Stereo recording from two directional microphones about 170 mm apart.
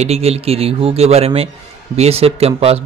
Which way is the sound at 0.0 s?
40° right (ahead or behind).